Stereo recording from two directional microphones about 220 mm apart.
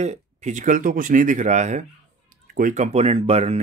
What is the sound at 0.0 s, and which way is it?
Speech, 30° right (ahead or behind).